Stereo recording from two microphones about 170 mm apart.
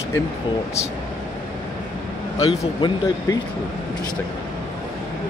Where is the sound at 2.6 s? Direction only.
20° left (ahead or behind).